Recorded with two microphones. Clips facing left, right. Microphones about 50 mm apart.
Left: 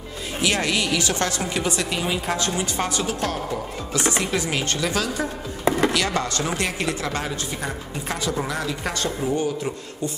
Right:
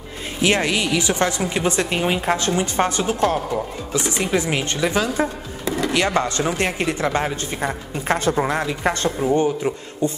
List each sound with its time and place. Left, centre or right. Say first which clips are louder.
0.4 s a woman's voice: right 4 dB; right
5.7 s chopping: left 3 dB; left
5.9 s a woman's voice: right 4 dB; right
8.1 s speech: right 7 dB; right